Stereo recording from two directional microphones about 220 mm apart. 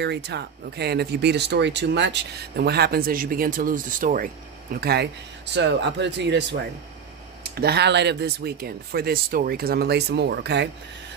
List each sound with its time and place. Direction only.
0.0 s speech: 50° right (ahead or behind)
7.6 s speech: 50° right (ahead or behind)